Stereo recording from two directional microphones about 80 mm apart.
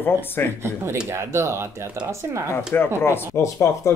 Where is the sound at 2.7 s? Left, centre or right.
Left.